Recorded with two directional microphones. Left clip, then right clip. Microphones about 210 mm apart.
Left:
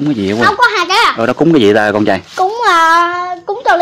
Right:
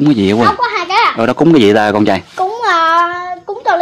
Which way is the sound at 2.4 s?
40° left (ahead or behind).